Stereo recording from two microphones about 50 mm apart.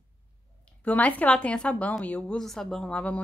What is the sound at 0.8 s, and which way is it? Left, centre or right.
A woman's voice, left.